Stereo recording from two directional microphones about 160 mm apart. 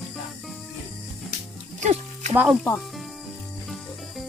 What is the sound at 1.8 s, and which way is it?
Music, 45° right (ahead or behind).